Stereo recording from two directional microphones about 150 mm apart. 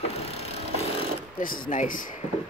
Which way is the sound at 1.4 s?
70° left (ahead or behind).